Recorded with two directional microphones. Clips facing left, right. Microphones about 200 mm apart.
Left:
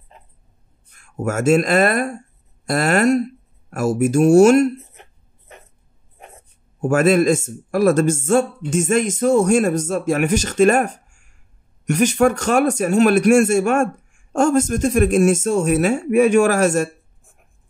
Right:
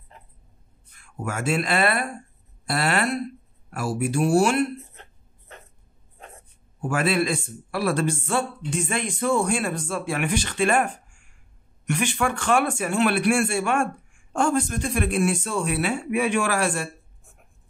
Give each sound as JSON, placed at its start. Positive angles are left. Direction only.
{"t": 0.9, "sound": "speech", "side_deg": 45}
{"t": 6.8, "sound": "a man's voice", "side_deg": 45}